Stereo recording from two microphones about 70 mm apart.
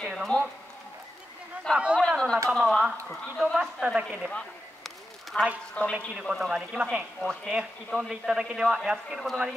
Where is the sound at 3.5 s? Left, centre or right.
Centre.